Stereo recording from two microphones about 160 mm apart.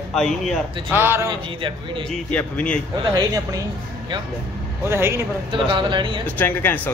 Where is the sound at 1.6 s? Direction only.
30° right (ahead or behind).